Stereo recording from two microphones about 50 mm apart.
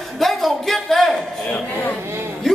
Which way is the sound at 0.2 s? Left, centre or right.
Centre.